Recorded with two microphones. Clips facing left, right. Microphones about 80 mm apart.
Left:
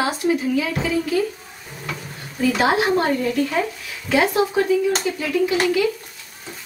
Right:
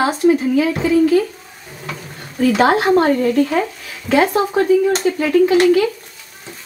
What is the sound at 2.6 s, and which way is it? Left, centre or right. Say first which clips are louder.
Speech: right 5 dB; right.